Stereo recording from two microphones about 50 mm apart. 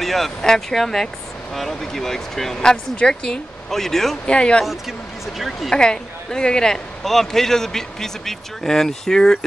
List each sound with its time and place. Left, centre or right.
0.0 s a woman's voice: centre
4.3 s speech: centre
5.4 s speech: centre
5.8 s a woman's voice: centre